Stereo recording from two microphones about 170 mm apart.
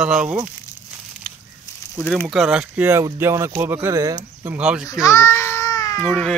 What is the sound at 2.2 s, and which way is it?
Speech, 5° right (ahead or behind).